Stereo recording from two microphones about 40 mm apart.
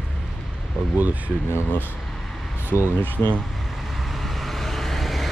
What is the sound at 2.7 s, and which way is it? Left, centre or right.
Speech, left.